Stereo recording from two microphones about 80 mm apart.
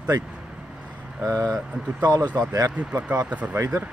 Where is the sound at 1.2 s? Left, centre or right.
Right.